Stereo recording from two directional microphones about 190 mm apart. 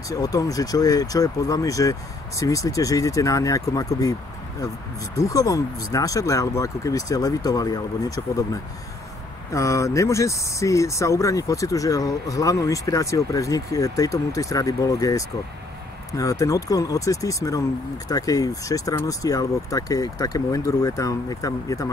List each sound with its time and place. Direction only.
0.1 s speech: 20° left (ahead or behind)
5.1 s speech: 20° left (ahead or behind)
9.5 s speech: 15° left (ahead or behind)